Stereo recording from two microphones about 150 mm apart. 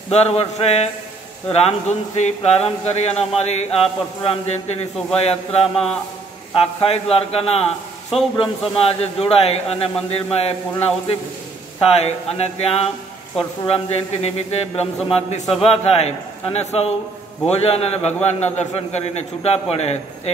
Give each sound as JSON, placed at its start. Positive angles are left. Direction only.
{"t": 0.1, "sound": "a man's voice", "side_deg": 40}
{"t": 11.8, "sound": "speech", "side_deg": 45}